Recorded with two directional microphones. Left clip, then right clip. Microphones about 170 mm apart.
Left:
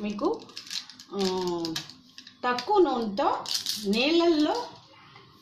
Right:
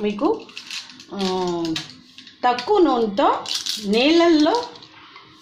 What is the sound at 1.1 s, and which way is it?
Speech, 20° right (ahead or behind).